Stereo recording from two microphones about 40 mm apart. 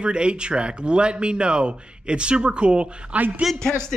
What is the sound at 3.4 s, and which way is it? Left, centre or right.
Speech, centre.